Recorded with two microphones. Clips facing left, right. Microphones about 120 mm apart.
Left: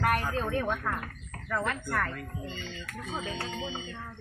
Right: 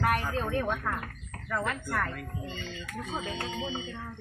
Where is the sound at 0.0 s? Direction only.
Centre (ahead or behind).